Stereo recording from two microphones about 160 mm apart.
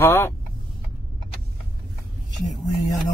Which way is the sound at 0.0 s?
15° left (ahead or behind).